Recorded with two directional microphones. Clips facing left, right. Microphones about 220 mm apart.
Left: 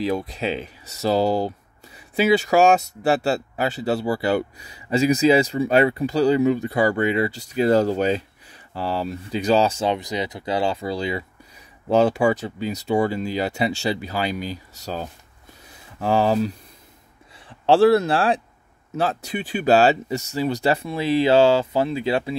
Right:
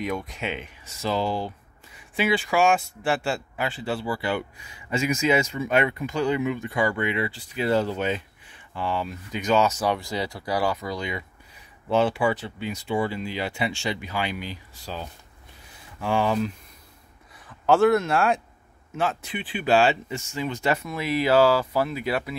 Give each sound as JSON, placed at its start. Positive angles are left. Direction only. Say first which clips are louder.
{"t": 0.0, "sound": "speech", "louder": "left 6 dB", "side_deg": 30}